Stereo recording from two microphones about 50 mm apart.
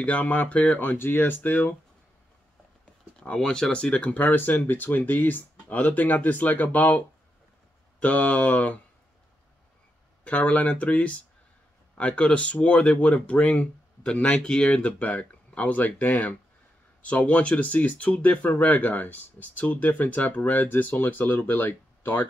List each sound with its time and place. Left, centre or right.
0.0 s speech: left
0.7 s speech: left
2.8 s a sound: left
3.4 s speech: centre
3.7 s speech: left
8.0 s speech: left
10.2 s speech: left
14.4 s speech: centre
14.8 s speech: left